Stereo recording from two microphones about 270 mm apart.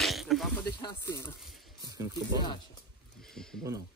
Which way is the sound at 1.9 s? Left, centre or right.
Centre.